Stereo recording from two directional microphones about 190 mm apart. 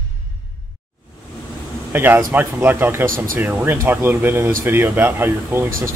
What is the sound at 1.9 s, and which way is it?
Speech, 10° right (ahead or behind).